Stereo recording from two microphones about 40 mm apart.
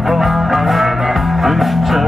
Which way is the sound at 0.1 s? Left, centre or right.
Centre.